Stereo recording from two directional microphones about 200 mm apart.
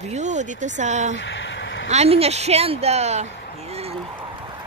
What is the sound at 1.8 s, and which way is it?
Speech, 30° right (ahead or behind).